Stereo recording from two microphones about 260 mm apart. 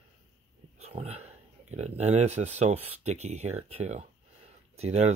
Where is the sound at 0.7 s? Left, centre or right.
Right.